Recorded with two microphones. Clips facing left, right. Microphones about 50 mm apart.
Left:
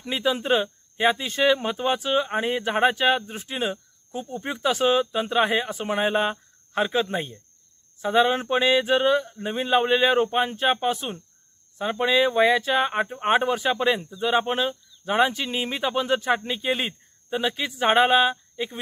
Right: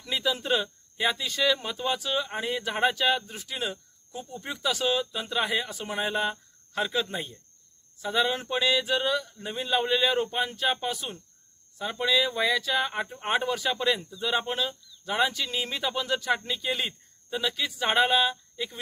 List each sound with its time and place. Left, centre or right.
0.0 s speech: left